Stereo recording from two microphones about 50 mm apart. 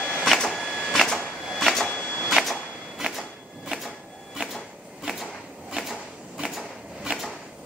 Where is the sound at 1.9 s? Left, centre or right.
Left.